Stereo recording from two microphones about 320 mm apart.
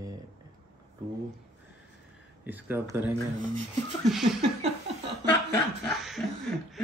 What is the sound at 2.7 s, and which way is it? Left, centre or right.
Speech, centre.